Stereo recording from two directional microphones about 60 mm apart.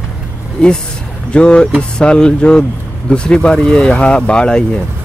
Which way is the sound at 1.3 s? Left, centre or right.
Centre.